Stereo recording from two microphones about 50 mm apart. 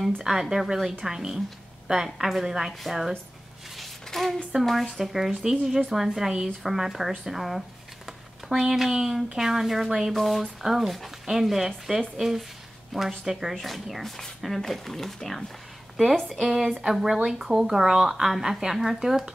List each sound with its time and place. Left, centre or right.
0.0 s speech: centre
3.7 s a sound: centre
4.6 s speech: centre
16.3 s speech: centre